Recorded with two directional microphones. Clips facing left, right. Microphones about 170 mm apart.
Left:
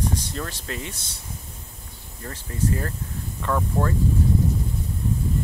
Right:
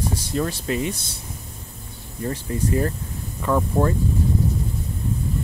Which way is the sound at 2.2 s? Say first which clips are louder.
Right 3 dB; 20° right (ahead or behind).